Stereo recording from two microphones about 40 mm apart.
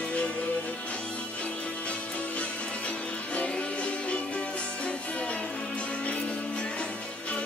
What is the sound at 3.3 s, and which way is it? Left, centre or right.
Music, left.